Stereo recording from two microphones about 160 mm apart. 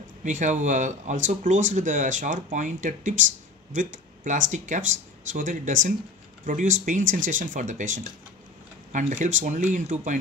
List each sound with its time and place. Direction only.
0.2 s speech: 50° right (ahead or behind)